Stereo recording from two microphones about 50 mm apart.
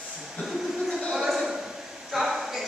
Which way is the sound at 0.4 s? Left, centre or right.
Centre.